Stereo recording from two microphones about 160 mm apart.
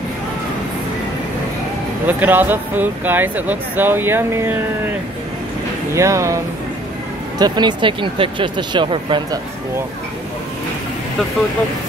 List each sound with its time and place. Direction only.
2.0 s speech: 10° right (ahead or behind)
5.9 s speech: 20° right (ahead or behind)